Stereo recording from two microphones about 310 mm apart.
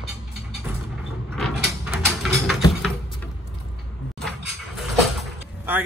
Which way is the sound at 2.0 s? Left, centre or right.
Centre.